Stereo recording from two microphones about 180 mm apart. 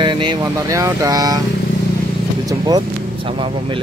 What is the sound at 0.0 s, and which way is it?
Speech, 25° right (ahead or behind).